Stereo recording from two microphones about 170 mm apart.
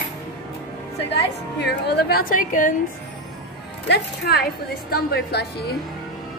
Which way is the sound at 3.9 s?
70° left (ahead or behind).